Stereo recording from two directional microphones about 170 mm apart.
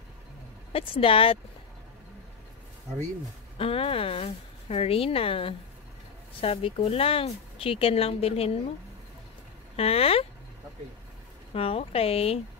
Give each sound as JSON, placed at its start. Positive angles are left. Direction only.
{"t": 0.7, "sound": "speech", "side_deg": 30}
{"t": 3.5, "sound": "speech", "side_deg": 35}
{"t": 9.8, "sound": "speech", "side_deg": 35}
{"t": 11.5, "sound": "speech", "side_deg": 35}